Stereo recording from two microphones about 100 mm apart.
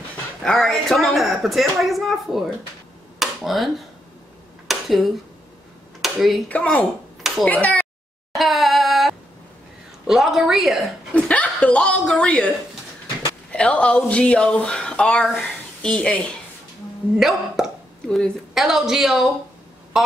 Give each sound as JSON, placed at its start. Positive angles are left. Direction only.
{"t": 0.4, "sound": "a woman's voice", "side_deg": 5}
{"t": 3.2, "sound": "a sound", "side_deg": 0}
{"t": 6.5, "sound": "speech", "side_deg": 10}
{"t": 8.4, "sound": "a sound", "side_deg": 0}
{"t": 10.0, "sound": "a woman's voice", "side_deg": -5}
{"t": 11.1, "sound": "speech", "side_deg": 15}
{"t": 17.2, "sound": "speech", "side_deg": -5}